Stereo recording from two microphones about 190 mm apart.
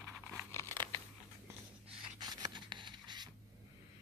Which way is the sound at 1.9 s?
25° right (ahead or behind).